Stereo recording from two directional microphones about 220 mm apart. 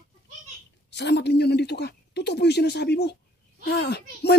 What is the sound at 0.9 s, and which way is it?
Speech, 50° left (ahead or behind).